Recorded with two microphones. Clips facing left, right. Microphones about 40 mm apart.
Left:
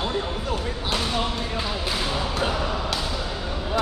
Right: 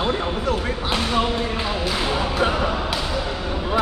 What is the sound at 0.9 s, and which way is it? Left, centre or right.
Speech, right.